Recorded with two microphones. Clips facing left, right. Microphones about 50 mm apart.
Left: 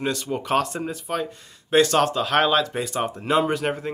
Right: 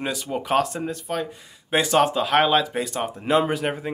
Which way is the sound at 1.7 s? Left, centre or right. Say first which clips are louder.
Left 1 dB; centre.